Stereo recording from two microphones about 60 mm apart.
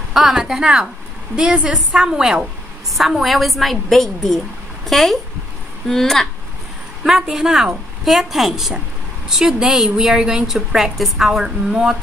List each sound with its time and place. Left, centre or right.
0.1 s a woman's voice: centre
7.1 s a woman's voice: centre